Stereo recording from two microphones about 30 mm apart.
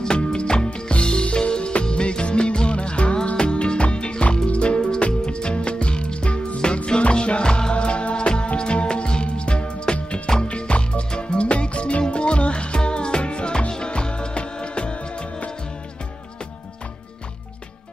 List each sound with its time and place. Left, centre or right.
0.2 s music: left
4.5 s music: left